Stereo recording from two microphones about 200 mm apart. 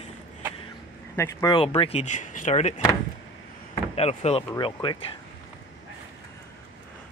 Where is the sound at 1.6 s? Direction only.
30° left (ahead or behind).